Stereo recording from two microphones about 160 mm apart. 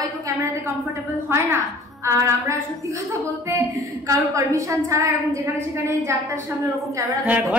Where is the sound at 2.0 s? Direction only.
20° right (ahead or behind).